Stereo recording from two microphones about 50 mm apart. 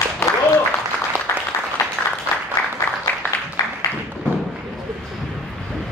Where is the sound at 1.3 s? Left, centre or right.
Left.